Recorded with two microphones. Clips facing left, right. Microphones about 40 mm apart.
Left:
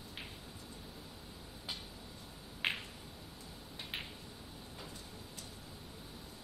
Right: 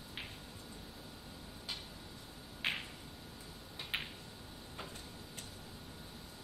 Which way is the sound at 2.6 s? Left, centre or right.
Left.